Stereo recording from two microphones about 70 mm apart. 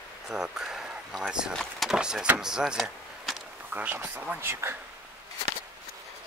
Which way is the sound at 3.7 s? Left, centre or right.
Right.